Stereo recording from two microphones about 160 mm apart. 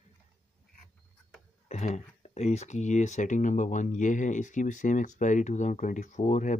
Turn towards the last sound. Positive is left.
turn(degrees=50)  # may be behind; listen again after turning